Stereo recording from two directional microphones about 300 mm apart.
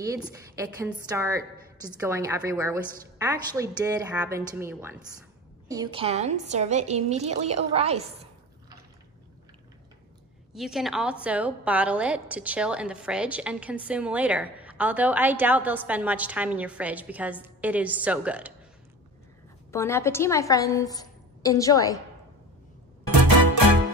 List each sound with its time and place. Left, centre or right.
0.0 s a woman's voice: centre
10.5 s a woman's voice: centre
19.7 s a woman's voice: centre